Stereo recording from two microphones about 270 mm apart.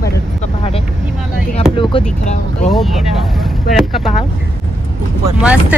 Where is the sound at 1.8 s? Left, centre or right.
Left.